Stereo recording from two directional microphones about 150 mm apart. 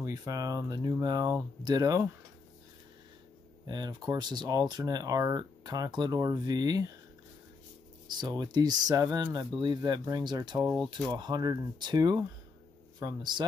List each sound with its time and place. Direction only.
0.0 s speech: 25° right (ahead or behind)
3.6 s speech: 30° right (ahead or behind)
8.1 s speech: 30° right (ahead or behind)